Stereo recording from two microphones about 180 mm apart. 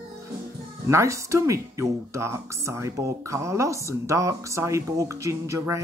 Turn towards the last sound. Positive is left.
turn(degrees=-15)  # may be behind; listen again after turning